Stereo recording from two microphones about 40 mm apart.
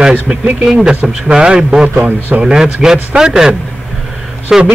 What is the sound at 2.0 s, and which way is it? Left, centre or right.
Speech, right.